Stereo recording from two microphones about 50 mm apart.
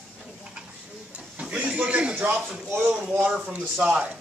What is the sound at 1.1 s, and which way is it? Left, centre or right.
Speech, right.